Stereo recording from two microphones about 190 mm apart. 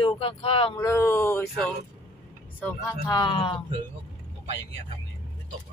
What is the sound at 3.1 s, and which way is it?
Speech, 25° left (ahead or behind).